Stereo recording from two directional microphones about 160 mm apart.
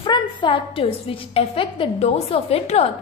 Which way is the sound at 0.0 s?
30° left (ahead or behind).